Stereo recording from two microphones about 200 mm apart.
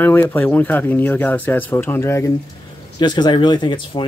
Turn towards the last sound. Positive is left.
turn(degrees=25)  # may be behind; listen again after turning